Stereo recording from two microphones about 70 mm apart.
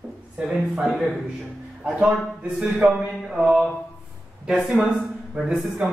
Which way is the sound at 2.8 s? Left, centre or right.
Centre.